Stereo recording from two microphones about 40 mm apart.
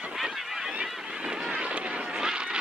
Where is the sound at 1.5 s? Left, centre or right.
Right.